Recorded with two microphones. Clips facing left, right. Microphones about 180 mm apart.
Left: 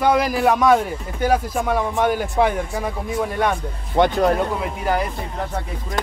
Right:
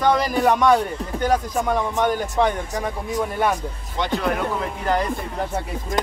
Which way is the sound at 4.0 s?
55° left (ahead or behind).